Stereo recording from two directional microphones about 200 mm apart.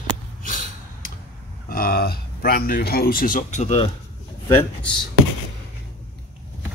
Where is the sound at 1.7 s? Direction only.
50° left (ahead or behind).